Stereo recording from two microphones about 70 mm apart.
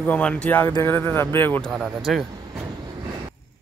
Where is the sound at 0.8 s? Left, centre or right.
Left.